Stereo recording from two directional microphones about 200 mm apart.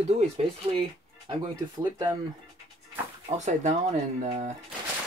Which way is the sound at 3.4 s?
35° right (ahead or behind).